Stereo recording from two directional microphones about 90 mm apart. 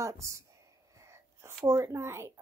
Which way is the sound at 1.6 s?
35° right (ahead or behind).